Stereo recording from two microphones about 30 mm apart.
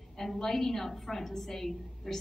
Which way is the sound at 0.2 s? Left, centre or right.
Centre.